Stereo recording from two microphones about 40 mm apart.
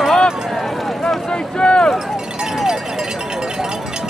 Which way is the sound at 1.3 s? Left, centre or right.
Left.